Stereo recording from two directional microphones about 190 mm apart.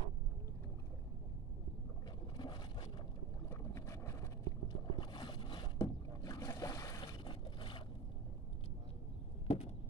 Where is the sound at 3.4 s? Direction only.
15° left (ahead or behind).